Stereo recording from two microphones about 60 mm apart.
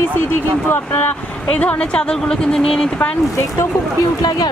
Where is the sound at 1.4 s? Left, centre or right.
Left.